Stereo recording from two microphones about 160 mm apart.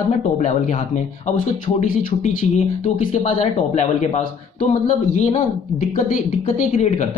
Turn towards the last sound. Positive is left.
turn(degrees=45)  # may be behind; listen again after turning